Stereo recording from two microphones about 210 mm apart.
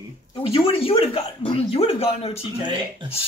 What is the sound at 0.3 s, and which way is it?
Speech, 25° left (ahead or behind).